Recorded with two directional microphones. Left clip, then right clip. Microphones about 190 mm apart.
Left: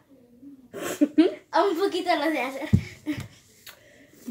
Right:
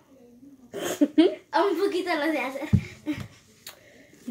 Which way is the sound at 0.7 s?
20° right (ahead or behind).